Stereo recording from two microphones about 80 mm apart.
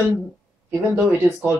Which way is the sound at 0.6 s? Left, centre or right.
Right.